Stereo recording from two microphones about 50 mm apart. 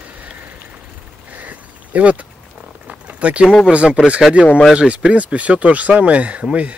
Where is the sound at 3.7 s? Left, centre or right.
Right.